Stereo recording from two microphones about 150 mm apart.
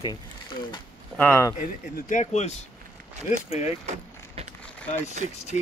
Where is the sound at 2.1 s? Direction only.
50° left (ahead or behind).